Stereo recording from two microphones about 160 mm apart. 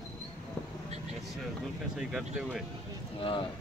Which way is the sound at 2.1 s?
5° right (ahead or behind).